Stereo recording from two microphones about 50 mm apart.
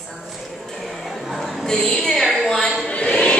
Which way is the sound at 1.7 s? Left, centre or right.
Centre.